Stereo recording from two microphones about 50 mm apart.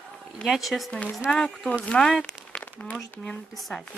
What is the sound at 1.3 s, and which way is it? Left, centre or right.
Speech, centre.